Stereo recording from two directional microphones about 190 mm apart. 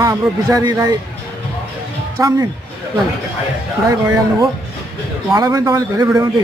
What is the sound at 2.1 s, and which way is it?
Speech, 15° right (ahead or behind).